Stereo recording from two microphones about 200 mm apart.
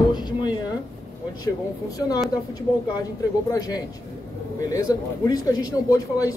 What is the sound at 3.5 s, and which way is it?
A man's voice, 20° left (ahead or behind).